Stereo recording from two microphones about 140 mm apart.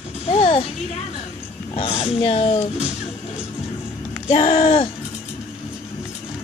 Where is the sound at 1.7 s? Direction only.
45° left (ahead or behind).